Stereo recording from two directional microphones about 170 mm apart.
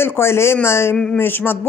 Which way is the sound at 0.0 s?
15° left (ahead or behind).